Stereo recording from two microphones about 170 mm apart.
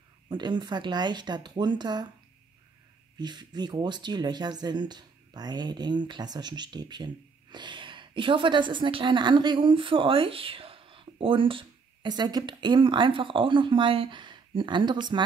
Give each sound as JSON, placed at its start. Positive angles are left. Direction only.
{"t": 0.3, "sound": "speech", "side_deg": -25}
{"t": 3.2, "sound": "a woman's voice", "side_deg": -25}